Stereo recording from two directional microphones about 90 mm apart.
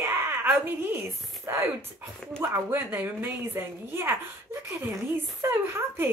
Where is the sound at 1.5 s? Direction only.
30° right (ahead or behind).